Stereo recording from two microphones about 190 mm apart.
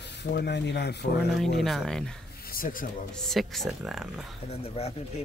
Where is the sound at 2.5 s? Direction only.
45° left (ahead or behind).